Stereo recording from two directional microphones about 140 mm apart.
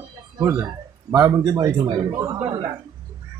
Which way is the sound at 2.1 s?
20° right (ahead or behind).